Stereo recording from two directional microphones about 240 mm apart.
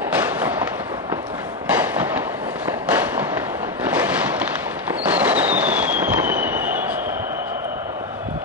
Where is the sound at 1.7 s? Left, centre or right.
Centre.